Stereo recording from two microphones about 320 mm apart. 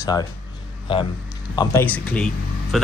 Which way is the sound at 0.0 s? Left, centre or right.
Centre.